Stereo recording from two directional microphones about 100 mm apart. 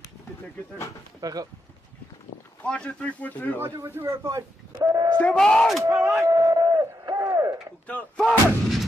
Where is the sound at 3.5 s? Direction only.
25° right (ahead or behind).